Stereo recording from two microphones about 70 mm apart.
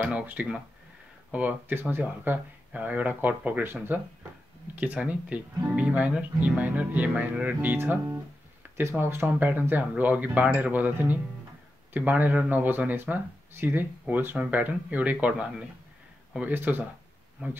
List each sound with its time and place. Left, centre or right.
0.0 s speech: right
16.3 s speech: right
17.4 s speech: centre